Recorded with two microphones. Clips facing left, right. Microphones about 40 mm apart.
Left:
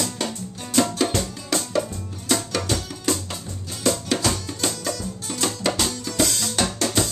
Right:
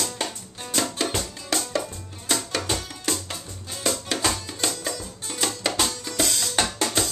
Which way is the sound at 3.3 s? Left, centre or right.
Centre.